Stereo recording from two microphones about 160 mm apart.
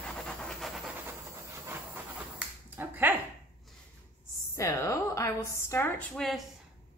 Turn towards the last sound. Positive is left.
turn(degrees=0)  # may be behind; listen again after turning